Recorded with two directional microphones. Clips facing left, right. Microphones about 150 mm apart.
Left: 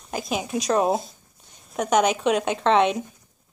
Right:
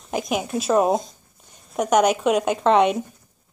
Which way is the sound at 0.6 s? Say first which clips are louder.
Right 3 dB; 5° right (ahead or behind).